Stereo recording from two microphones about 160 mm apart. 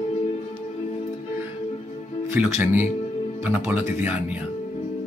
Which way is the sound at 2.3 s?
15° right (ahead or behind).